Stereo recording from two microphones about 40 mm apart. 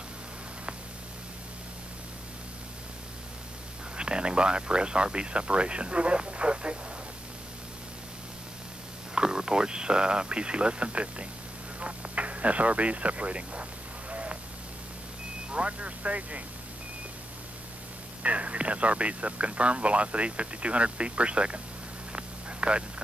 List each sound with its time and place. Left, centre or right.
3.9 s speech: right
9.1 s speech: centre
14.1 s a sound: right
15.5 s speech: right
18.2 s speech: right
22.1 s a sound: right